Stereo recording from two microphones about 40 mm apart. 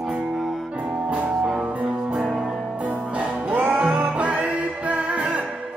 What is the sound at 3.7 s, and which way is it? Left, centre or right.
Music, right.